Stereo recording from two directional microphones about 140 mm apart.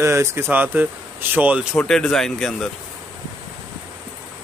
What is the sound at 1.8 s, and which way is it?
Speech, 5° left (ahead or behind).